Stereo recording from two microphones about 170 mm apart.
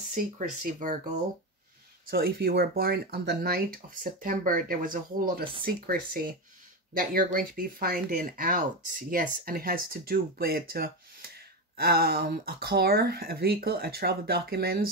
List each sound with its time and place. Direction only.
0.1 s speech: 50° right (ahead or behind)
2.0 s speech: 60° right (ahead or behind)